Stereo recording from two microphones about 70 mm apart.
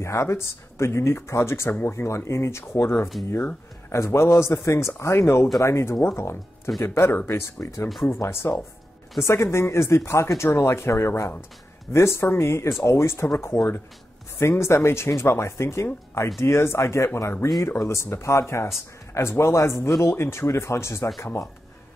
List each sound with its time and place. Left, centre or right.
0.0 s speech: left